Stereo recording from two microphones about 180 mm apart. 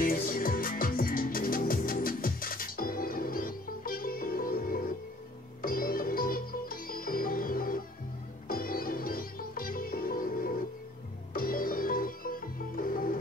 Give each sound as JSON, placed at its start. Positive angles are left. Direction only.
{"t": 0.0, "sound": "music", "side_deg": 50}